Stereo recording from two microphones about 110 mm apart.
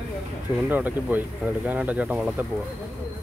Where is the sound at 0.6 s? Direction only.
15° right (ahead or behind).